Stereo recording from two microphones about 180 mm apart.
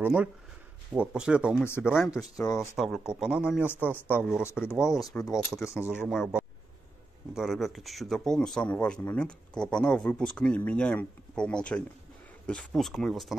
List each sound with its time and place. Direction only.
0.0 s speech: 10° right (ahead or behind)
4.5 s speech: 15° left (ahead or behind)
4.7 s speech: centre (ahead or behind)
5.5 s speech: 15° left (ahead or behind)
6.0 s speech: 5° right (ahead or behind)